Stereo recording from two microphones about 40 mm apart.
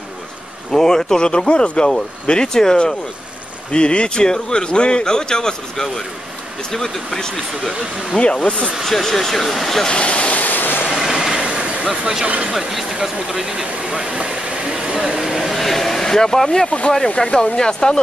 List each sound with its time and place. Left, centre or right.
0.7 s a man's voice: centre
8.2 s a man's voice: left
8.8 s speech: centre
9.8 s speech: left
10.4 s vehicle: left
10.8 s vehicle: centre
11.4 s vehicle: right
13.0 s speech: centre
14.0 s a sound: right
15.0 s speech: centre
15.3 s a man's voice: centre